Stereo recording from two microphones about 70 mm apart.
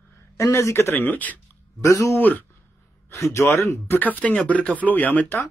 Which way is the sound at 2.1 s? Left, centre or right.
Left.